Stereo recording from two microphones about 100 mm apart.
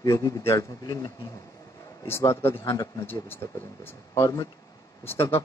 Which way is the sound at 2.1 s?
25° left (ahead or behind).